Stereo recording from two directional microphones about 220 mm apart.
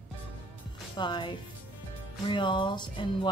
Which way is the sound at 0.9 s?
20° left (ahead or behind).